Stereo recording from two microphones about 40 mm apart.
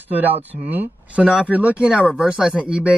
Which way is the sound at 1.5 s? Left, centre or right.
Right.